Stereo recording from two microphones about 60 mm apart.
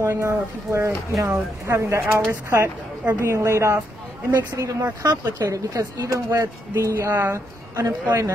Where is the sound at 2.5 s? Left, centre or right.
Right.